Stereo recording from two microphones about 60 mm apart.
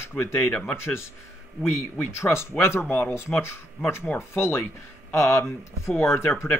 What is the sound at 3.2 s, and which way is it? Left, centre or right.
Speech, left.